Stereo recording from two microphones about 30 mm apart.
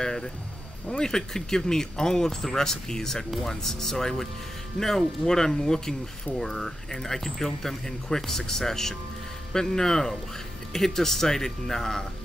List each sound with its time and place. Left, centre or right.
0.0 s music: left
0.8 s speech: left